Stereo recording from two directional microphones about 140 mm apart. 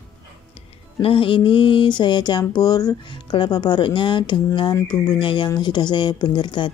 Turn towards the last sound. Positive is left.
turn(degrees=35)  # may be behind; listen again after turning